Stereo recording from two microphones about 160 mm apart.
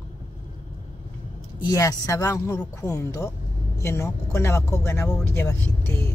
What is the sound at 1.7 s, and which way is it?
Speech, 20° left (ahead or behind).